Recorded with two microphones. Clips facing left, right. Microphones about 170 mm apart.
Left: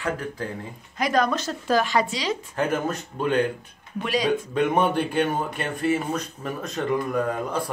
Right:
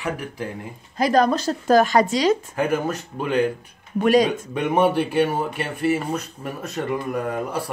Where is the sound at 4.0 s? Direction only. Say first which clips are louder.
Right 9 dB; 50° right (ahead or behind).